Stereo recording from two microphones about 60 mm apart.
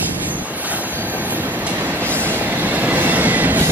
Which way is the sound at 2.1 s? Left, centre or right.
Right.